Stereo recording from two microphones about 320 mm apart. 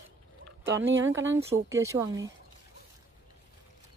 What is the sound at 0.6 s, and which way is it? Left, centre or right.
Speech, right.